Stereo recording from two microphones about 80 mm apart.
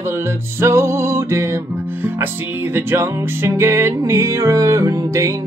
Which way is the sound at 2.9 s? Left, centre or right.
Right.